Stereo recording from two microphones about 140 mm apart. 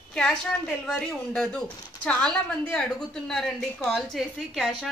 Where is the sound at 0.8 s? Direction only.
5° left (ahead or behind).